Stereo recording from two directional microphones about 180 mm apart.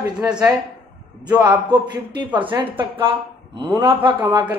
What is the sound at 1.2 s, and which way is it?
A woman's voice, 25° right (ahead or behind).